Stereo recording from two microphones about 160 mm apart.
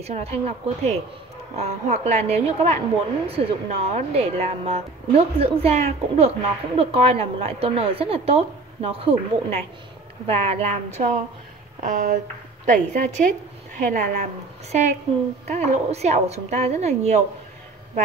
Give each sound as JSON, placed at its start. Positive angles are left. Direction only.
{"t": 0.0, "sound": "a woman's voice", "side_deg": -40}